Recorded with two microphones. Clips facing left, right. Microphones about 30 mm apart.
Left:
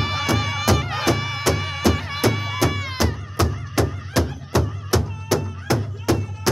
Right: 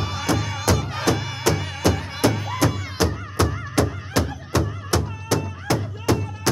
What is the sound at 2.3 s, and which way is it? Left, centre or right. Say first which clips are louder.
Music: left 1 dB; left.